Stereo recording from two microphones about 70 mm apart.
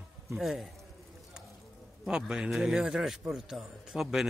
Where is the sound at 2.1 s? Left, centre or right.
Centre.